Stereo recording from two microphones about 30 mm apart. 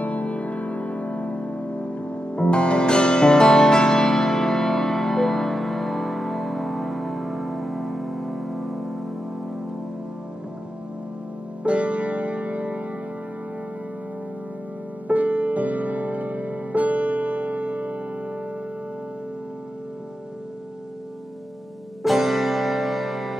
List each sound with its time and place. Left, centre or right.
0.0 s music: left; by 9.1 s centre
11.6 s music: right
15.0 s music: right
22.0 s music: centre